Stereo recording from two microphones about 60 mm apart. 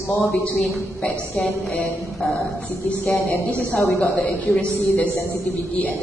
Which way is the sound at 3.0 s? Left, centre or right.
Left.